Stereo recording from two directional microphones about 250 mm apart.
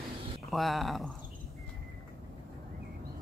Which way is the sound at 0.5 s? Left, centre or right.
Centre.